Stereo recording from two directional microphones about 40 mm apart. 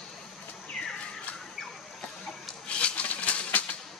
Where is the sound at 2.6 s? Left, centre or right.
Left.